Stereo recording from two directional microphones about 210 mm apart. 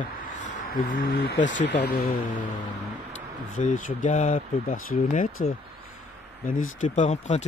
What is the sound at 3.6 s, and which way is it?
Speech, 35° left (ahead or behind).